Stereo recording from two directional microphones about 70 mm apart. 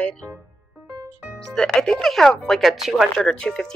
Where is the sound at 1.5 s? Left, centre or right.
Centre.